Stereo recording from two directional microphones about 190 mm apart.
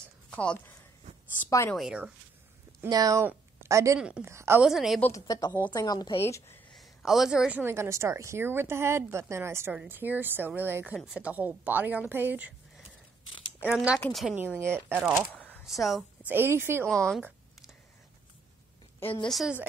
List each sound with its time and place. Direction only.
0.3 s a woman's voice: 5° left (ahead or behind)
1.8 s speech: 5° right (ahead or behind)
2.8 s a woman's voice: 20° right (ahead or behind)
4.6 s speech: centre (ahead or behind)
5.2 s a woman's voice: 20° left (ahead or behind)
6.7 s a woman's voice: centre (ahead or behind)
14.3 s a woman's voice: 10° right (ahead or behind)
15.3 s speech: 5° left (ahead or behind)
16.9 s speech: 5° left (ahead or behind)
17.2 s a sound: centre (ahead or behind)
19.2 s speech: centre (ahead or behind)